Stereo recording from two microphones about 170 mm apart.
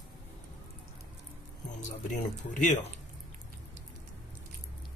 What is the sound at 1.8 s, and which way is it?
Speech, 50° left (ahead or behind).